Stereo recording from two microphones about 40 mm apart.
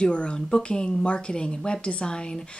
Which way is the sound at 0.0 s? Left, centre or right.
Left.